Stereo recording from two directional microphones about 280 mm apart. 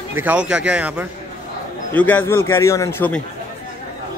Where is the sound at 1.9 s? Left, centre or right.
Centre.